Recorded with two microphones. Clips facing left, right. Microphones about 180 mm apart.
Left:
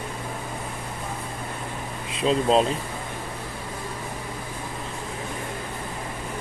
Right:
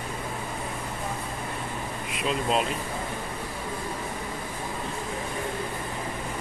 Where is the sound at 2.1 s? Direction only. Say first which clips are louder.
Left 6 dB; 30° left (ahead or behind).